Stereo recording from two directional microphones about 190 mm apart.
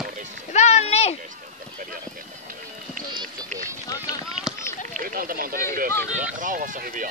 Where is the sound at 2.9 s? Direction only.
45° right (ahead or behind).